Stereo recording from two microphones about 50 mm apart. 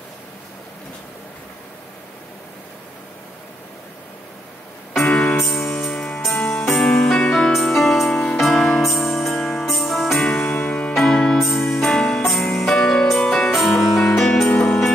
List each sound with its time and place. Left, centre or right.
5.0 s music: left
5.4 s music: centre
5.9 s music: left
6.8 s music: centre
7.5 s music: centre
10.2 s music: centre
11.0 s music: centre
14.5 s music: left